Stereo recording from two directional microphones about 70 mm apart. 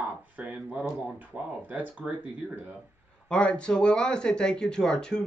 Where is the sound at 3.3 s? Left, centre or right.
Centre.